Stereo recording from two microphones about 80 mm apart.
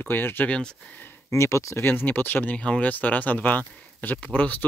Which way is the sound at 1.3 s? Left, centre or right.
Left.